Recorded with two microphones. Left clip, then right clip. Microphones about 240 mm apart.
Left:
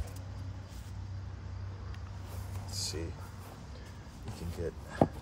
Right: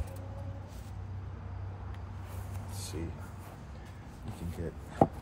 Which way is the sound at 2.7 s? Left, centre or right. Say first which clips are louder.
Left 5 dB; left.